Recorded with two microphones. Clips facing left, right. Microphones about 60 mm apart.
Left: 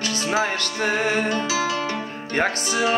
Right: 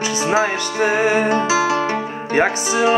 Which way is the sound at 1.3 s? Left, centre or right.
Right.